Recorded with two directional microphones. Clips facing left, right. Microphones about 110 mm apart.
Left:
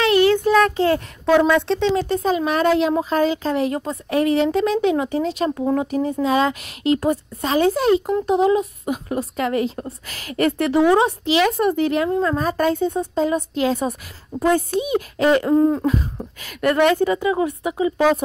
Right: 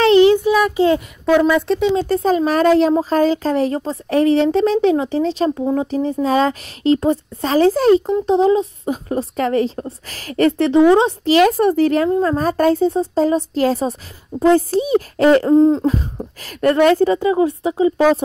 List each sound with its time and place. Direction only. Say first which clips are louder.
0.0 s child singing: right 5 dB; 25° right (ahead or behind)
0.4 s child singing: right 1 dB; 10° right (ahead or behind)
1.2 s speech: right 1 dB; centre (ahead or behind)
2.0 s a woman's voice: right 4 dB; 40° right (ahead or behind)
11.2 s a woman's voice: right 5 dB; 40° right (ahead or behind)
15.5 s a woman's voice: right 4 dB; 20° right (ahead or behind)
16.3 s a woman's voice: right 3 dB; 35° right (ahead or behind)